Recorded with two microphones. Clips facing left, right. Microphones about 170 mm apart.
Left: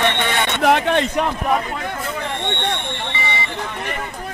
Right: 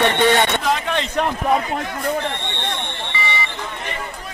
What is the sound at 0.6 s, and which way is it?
Speech, 70° left (ahead or behind).